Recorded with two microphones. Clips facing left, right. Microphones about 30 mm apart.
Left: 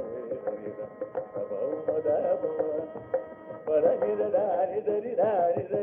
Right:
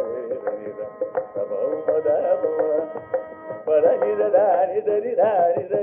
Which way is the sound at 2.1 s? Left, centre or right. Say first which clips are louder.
Right 5 dB; centre.